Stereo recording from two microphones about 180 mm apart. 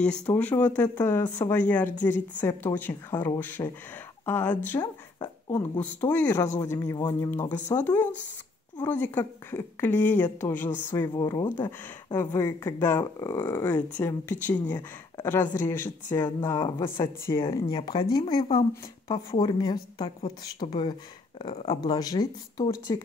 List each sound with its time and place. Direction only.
0.0 s speech: 5° left (ahead or behind)
4.7 s speech: 20° left (ahead or behind)
5.8 s speech: 10° left (ahead or behind)
16.6 s speech: 25° left (ahead or behind)